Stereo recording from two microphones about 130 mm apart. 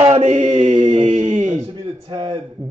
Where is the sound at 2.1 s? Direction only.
40° right (ahead or behind).